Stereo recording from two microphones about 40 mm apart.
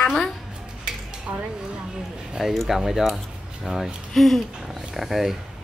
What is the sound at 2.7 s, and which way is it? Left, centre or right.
Speech, centre.